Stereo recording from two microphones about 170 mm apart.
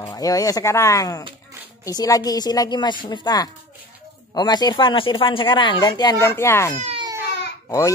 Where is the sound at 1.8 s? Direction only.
20° left (ahead or behind).